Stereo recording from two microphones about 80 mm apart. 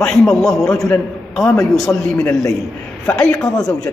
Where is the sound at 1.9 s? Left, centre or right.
Left.